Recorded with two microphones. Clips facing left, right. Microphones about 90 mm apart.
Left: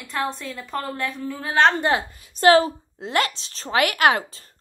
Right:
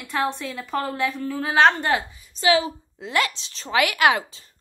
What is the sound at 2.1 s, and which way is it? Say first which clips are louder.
A woman's voice: left 9 dB; 55° left (ahead or behind).